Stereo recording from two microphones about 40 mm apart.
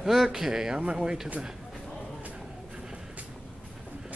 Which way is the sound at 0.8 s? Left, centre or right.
Right.